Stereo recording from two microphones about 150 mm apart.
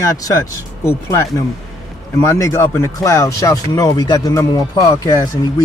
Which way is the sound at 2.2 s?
20° left (ahead or behind).